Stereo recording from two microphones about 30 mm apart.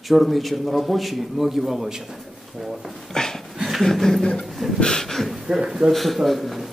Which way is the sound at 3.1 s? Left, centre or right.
Centre.